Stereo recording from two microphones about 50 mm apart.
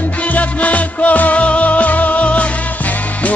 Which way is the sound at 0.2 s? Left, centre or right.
Left.